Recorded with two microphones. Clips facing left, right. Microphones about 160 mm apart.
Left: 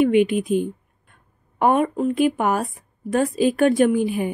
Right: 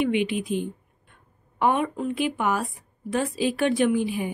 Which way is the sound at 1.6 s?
45° left (ahead or behind).